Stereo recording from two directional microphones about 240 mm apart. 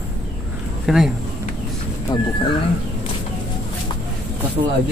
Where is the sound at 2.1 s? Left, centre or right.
Centre.